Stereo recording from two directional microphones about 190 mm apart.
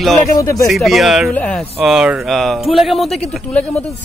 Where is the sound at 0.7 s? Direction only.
Centre (ahead or behind).